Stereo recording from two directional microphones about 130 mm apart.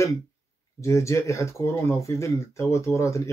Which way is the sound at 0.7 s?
25° left (ahead or behind).